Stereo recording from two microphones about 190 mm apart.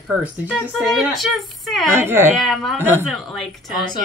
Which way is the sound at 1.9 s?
10° right (ahead or behind).